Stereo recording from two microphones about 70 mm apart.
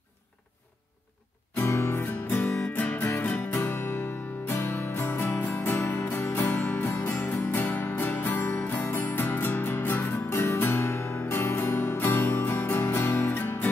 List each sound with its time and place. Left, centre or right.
1.6 s music: left